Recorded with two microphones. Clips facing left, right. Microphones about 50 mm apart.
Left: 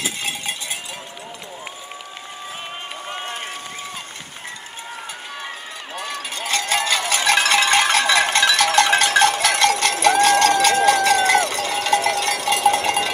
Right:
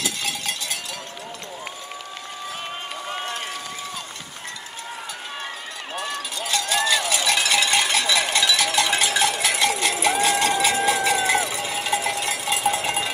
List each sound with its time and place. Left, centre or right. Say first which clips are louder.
0.0 s cowbell: left 1 dB; left
6.0 s cowbell: left 3 dB; left